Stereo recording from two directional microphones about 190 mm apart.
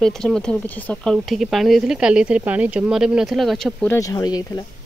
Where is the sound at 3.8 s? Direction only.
15° left (ahead or behind).